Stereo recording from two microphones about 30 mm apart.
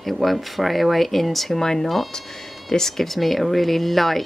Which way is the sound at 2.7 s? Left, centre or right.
Centre.